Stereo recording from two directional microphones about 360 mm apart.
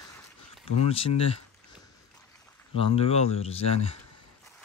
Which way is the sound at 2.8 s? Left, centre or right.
Centre.